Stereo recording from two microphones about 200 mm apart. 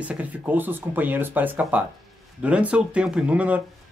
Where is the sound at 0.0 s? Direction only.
5° right (ahead or behind).